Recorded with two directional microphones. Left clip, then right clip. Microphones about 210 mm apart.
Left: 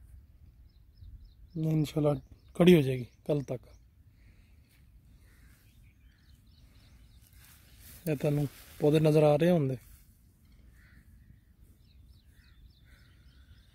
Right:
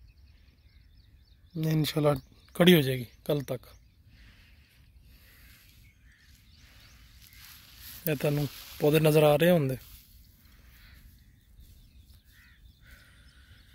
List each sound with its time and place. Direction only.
1.5 s speech: centre (ahead or behind)
8.0 s speech: centre (ahead or behind)
8.5 s speech: 45° left (ahead or behind)
8.7 s speech: centre (ahead or behind)